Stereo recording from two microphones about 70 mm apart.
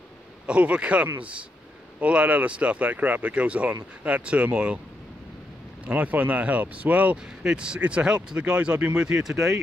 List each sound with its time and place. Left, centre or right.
0.5 s speech: centre
1.0 s speech: right
5.9 s speech: right
9.3 s speech: right